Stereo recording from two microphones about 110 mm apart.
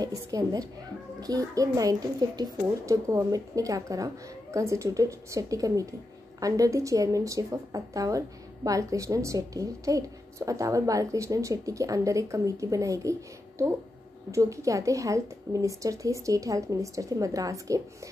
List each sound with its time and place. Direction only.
0.0 s a woman's voice: 35° right (ahead or behind)
14.3 s a woman's voice: 30° right (ahead or behind)